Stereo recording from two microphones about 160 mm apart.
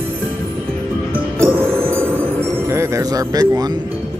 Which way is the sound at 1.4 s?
15° right (ahead or behind).